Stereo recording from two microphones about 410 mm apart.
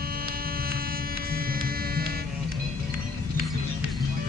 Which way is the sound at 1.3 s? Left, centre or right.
Right.